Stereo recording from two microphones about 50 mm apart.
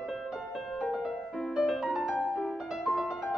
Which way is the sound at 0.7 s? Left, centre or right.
Centre.